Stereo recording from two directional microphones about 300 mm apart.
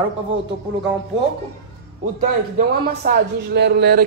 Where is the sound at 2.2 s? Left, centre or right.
Right.